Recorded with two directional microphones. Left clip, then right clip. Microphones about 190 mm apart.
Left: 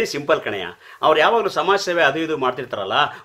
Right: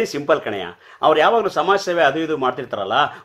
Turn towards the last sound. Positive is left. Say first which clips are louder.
# right 1 dB
turn(degrees=40)  # may be behind; listen again after turning